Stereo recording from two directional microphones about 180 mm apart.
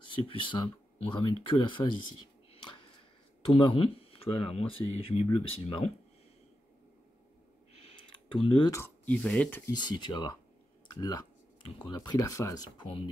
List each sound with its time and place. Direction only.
0.1 s speech: 25° left (ahead or behind)
2.5 s a sound: 30° left (ahead or behind)
3.4 s speech: 30° left (ahead or behind)
7.7 s clicking: 30° left (ahead or behind)
8.7 s speech: 10° left (ahead or behind)
9.7 s speech: 25° left (ahead or behind)
10.9 s computer keyboard: 20° left (ahead or behind)
11.9 s speech: 25° left (ahead or behind)